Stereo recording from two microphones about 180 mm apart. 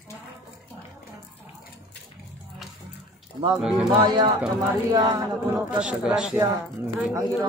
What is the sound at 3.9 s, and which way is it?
Speech, 25° right (ahead or behind).